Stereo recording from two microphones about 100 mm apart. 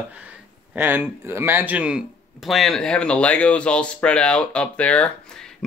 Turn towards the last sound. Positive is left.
turn(degrees=10)  # may be behind; listen again after turning